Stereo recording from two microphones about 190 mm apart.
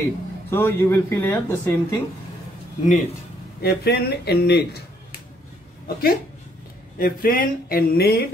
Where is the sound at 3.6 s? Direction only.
55° left (ahead or behind).